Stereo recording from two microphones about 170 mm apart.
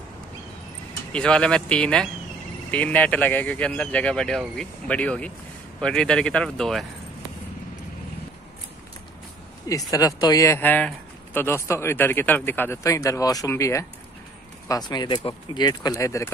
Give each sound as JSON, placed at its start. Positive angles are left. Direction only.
{"t": 1.1, "sound": "speech", "side_deg": 5}
{"t": 9.7, "sound": "speech", "side_deg": 20}